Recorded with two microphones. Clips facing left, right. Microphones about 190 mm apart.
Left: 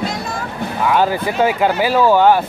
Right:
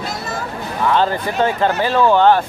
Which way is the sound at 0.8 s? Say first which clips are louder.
Left 1 dB; 10° left (ahead or behind).